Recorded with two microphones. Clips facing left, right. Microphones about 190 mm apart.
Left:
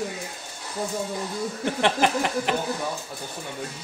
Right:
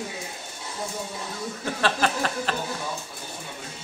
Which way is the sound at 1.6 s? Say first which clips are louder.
Left 2 dB; 20° left (ahead or behind).